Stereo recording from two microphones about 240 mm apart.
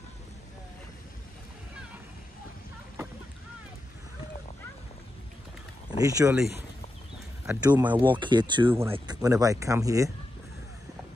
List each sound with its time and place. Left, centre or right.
5.9 s speech: centre
7.6 s speech: centre
8.0 s speech: centre